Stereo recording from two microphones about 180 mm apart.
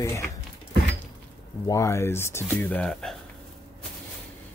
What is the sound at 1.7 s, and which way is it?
Speech, 15° left (ahead or behind).